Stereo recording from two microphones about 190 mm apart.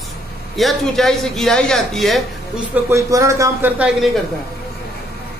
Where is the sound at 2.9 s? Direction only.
15° right (ahead or behind).